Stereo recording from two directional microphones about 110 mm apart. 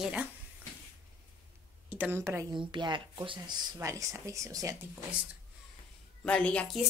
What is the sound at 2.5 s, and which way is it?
Speech, 45° right (ahead or behind).